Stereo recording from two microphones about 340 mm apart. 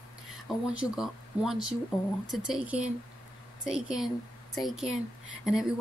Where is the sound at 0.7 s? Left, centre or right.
Centre.